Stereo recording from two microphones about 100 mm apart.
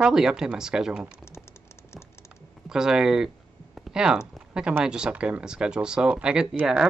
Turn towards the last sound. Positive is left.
turn(degrees=-5)  # may be behind; listen again after turning